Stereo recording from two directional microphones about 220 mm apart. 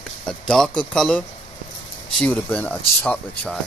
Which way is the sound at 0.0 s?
5° left (ahead or behind).